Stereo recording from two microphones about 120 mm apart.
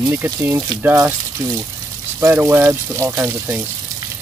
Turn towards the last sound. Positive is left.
turn(degrees=-20)  # may be behind; listen again after turning